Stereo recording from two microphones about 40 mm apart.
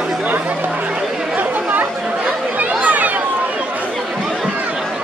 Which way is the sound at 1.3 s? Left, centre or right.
Right.